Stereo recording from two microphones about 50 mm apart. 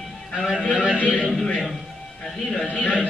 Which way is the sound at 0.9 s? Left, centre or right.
Left.